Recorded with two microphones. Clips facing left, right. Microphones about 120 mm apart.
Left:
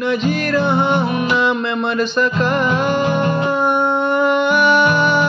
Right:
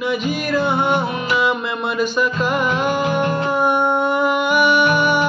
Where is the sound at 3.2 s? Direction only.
10° left (ahead or behind).